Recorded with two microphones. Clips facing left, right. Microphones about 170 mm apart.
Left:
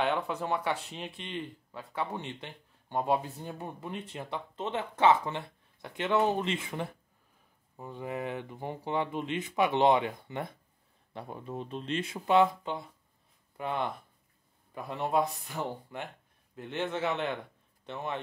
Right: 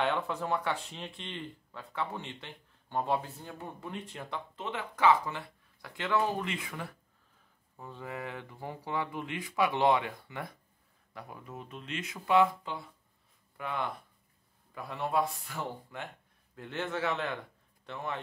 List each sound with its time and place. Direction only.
0.0 s speech: 20° left (ahead or behind)